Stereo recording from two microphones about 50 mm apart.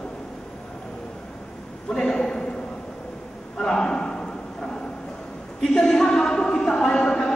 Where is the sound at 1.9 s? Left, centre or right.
Centre.